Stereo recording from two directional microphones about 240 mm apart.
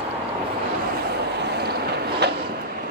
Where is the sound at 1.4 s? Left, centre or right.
Right.